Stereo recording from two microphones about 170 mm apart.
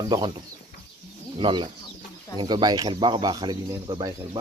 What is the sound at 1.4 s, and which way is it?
Speech, 30° right (ahead or behind).